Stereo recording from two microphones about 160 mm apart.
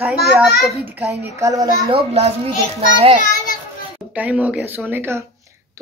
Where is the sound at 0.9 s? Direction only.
20° right (ahead or behind).